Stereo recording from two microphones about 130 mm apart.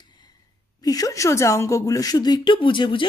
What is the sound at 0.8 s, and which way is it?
A woman's voice, 30° left (ahead or behind).